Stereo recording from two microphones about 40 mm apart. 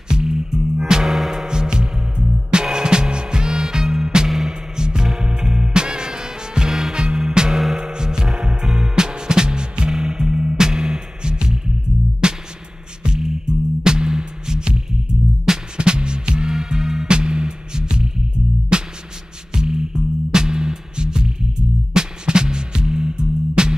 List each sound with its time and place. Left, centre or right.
0.1 s music: centre
1.0 s music: centre
15.8 s music: right
17.1 s music: right